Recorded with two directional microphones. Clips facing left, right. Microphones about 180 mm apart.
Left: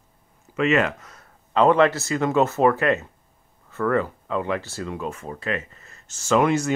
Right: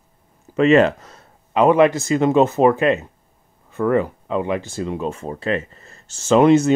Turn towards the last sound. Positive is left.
turn(degrees=-25)  # may be behind; listen again after turning